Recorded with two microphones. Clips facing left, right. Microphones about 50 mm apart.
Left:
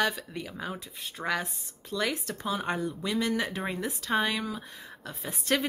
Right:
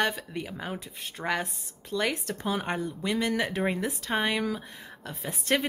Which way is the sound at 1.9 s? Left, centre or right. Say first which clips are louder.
Right 2 dB; right.